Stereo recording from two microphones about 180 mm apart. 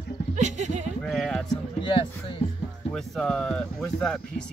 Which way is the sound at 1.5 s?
25° left (ahead or behind).